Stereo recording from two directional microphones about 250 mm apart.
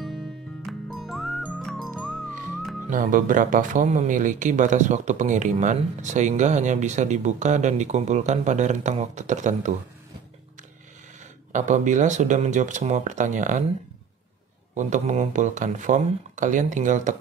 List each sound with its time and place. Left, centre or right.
0.9 s music: centre
2.9 s speech: right
11.5 s speech: right
14.7 s speech: right